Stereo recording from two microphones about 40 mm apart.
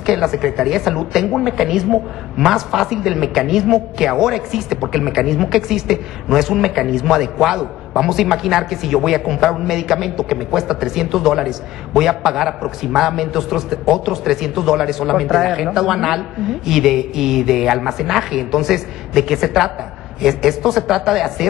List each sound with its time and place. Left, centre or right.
0.0 s a woman's voice: centre